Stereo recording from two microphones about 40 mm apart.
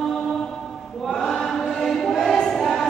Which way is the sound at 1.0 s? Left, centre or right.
Centre.